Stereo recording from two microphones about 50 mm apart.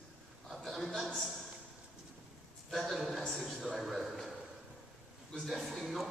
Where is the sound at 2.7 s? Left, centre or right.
Centre.